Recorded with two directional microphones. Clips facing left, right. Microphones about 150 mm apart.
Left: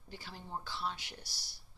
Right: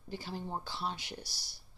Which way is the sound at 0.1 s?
25° right (ahead or behind).